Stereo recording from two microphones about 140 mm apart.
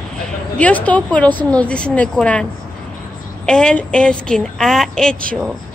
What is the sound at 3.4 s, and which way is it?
A woman's voice, 5° left (ahead or behind).